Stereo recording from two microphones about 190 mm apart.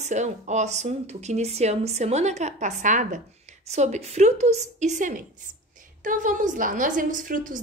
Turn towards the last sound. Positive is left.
turn(degrees=-45)  # may be behind; listen again after turning